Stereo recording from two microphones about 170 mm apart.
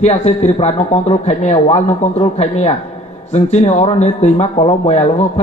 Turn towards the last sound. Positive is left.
turn(degrees=40)  # may be behind; listen again after turning